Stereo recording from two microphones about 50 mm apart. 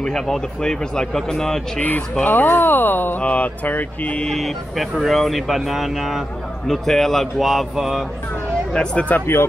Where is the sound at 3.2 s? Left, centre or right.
Left.